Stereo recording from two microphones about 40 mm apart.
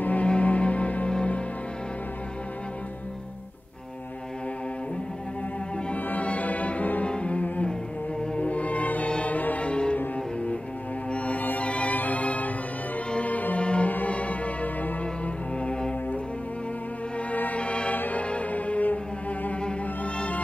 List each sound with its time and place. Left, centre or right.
0.0 s music: left
6.0 s music: left
7.1 s cello: left
8.4 s music: left
9.7 s music: left
11.1 s music: left
13.6 s music: left
15.6 s music: left
17.3 s music: left
17.9 s music: left
18.2 s music: left